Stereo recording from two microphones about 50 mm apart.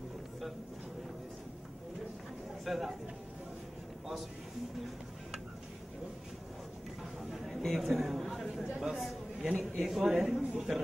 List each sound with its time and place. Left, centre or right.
2.6 s a man's voice: centre
7.3 s a sound: centre
8.6 s chatter: centre
9.6 s a sound: centre
9.9 s a man's voice: centre
10.2 s a man's voice: centre